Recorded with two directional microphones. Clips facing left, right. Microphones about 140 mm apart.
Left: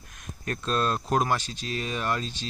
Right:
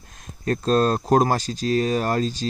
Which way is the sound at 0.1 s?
30° right (ahead or behind).